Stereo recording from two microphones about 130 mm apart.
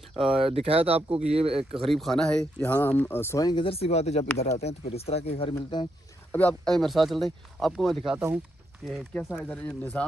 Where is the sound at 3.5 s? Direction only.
45° left (ahead or behind).